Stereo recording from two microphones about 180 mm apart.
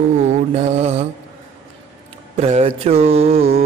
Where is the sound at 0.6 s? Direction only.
35° right (ahead or behind).